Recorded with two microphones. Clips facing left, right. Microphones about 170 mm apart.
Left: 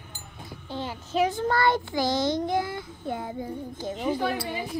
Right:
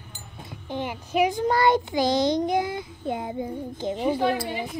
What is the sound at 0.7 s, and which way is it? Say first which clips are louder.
A child's voice: right 3 dB; 15° right (ahead or behind).